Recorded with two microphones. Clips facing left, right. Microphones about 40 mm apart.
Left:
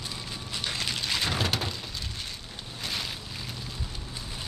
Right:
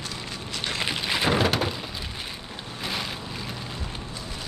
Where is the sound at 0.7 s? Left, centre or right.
Right.